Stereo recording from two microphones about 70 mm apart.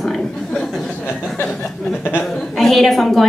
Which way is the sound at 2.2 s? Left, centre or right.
Centre.